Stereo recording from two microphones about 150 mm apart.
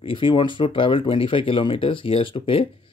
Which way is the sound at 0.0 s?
35° left (ahead or behind).